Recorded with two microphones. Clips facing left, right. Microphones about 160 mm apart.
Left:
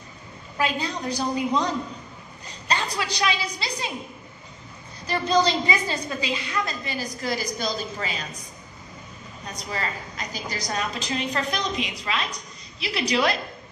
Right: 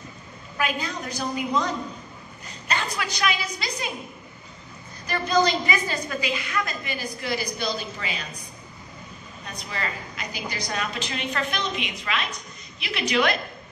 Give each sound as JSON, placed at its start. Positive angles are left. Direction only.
{"t": 0.6, "sound": "a woman's voice", "side_deg": 30}
{"t": 2.7, "sound": "a woman's voice", "side_deg": 30}
{"t": 5.0, "sound": "a woman's voice", "side_deg": 30}
{"t": 9.5, "sound": "a woman's voice", "side_deg": 40}